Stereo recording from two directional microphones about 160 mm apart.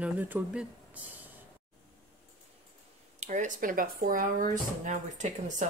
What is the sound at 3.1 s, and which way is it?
Speech, 50° right (ahead or behind).